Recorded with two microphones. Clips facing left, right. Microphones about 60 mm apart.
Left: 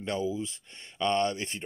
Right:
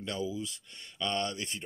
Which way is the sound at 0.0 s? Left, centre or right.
Left.